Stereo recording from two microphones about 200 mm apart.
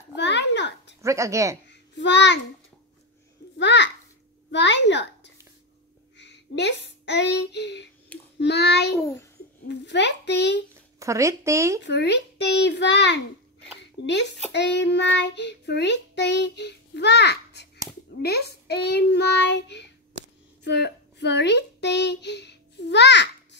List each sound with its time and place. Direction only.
0.1 s a sound: 60° left (ahead or behind)
1.0 s speech: 15° right (ahead or behind)
1.7 s a sound: 60° left (ahead or behind)
3.5 s a child's voice: 60° left (ahead or behind)
11.0 s speech: 15° right (ahead or behind)
11.8 s a child's voice: 60° left (ahead or behind)
15.1 s child singing: 60° left (ahead or behind)
18.2 s a child's voice: 55° left (ahead or behind)